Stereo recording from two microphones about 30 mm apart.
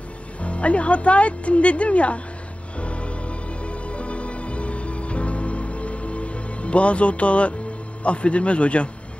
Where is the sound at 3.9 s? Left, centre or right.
Left.